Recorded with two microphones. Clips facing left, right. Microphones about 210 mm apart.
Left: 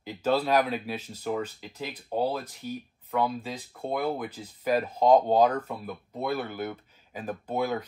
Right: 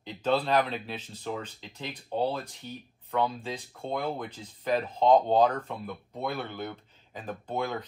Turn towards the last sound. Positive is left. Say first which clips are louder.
# left 3 dB
turn(degrees=5)  # may be behind; listen again after turning